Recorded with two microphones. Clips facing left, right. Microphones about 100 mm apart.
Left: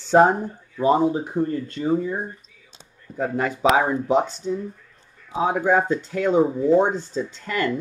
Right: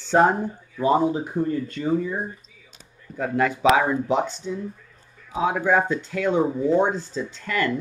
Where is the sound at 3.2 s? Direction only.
35° left (ahead or behind).